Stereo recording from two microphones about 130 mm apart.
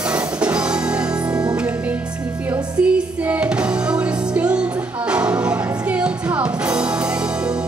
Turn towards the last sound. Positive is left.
turn(degrees=-5)  # may be behind; listen again after turning